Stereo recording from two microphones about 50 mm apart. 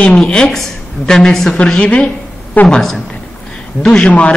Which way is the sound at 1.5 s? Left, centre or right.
Left.